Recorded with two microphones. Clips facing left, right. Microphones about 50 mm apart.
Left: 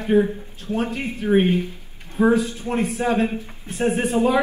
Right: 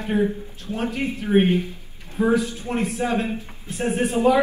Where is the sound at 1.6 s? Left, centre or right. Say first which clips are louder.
Left 1 dB; left.